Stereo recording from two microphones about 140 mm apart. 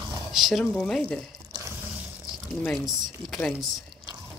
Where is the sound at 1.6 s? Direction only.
15° right (ahead or behind).